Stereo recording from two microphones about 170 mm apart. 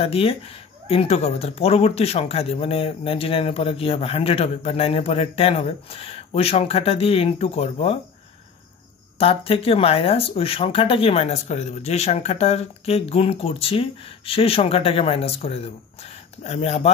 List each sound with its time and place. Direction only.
0.0 s speech: 35° left (ahead or behind)
9.2 s speech: 35° left (ahead or behind)